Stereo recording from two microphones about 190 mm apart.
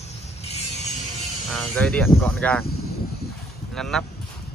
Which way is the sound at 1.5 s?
5° left (ahead or behind).